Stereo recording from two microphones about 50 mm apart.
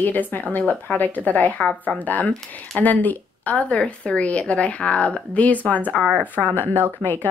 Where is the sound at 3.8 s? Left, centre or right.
Centre.